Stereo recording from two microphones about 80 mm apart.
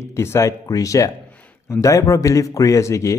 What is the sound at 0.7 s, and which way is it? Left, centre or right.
A man's voice, left.